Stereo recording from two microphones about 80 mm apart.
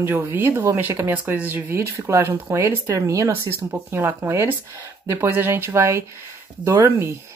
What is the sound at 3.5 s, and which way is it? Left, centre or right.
Speech, right.